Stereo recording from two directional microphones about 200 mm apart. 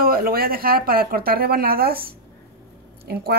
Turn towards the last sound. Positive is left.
turn(degrees=-50)  # may be behind; listen again after turning